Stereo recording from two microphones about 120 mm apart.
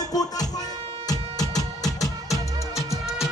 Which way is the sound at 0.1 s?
30° left (ahead or behind).